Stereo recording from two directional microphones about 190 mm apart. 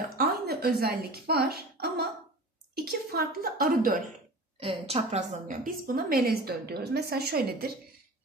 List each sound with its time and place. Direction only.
0.2 s a woman's voice: 50° right (ahead or behind)
4.6 s a woman's voice: 30° right (ahead or behind)
5.6 s a woman's voice: 50° right (ahead or behind)